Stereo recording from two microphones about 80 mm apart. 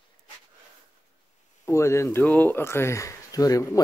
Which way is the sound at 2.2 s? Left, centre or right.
Left.